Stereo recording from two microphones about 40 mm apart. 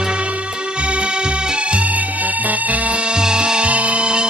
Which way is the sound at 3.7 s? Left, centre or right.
Right.